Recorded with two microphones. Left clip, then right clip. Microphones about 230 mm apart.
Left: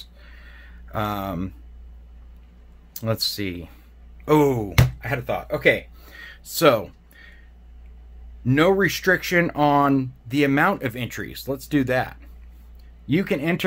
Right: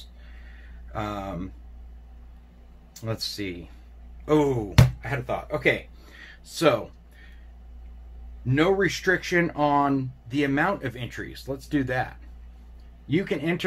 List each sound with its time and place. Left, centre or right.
0.2 s a sound: left
2.9 s speech: left
8.5 s speech: left